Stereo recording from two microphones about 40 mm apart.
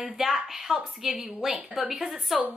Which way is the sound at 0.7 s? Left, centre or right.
Centre.